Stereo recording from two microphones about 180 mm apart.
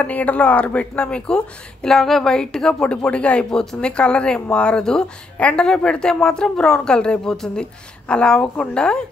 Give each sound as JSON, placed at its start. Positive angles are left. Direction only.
{"t": 0.0, "sound": "a woman's voice", "side_deg": 10}